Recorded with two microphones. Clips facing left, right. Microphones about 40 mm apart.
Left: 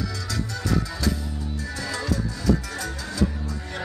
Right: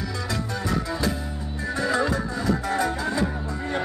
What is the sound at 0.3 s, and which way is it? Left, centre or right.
Music, right.